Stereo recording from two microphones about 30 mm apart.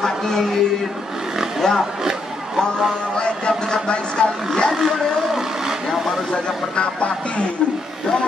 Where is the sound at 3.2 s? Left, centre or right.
Left.